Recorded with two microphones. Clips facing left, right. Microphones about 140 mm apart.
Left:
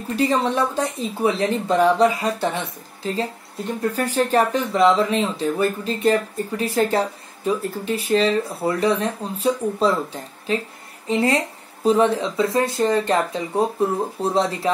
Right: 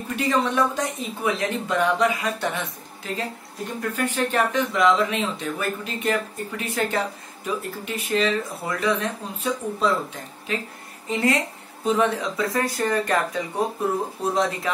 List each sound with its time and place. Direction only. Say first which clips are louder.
0.1 s speech: left 3 dB; 35° left (ahead or behind)